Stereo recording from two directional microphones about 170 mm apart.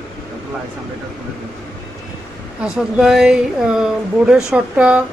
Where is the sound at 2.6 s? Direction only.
5° right (ahead or behind).